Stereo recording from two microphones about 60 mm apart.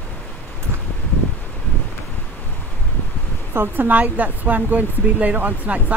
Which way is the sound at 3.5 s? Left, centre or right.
Right.